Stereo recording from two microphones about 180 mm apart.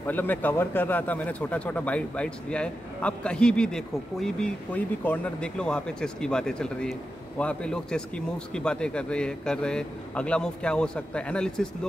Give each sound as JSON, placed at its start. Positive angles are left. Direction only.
{"t": 0.0, "sound": "a man's voice", "side_deg": 10}